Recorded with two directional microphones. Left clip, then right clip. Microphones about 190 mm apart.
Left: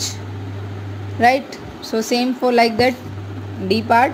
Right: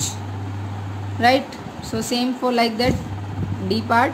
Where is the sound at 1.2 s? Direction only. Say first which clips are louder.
Left 2 dB; 20° left (ahead or behind).